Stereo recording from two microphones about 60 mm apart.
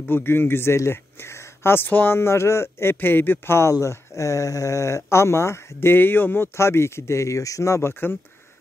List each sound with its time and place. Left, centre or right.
0.1 s speech: left
3.8 s speech: left
7.9 s speech: left